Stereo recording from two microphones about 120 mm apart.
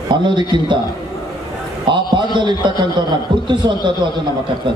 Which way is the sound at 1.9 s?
40° right (ahead or behind).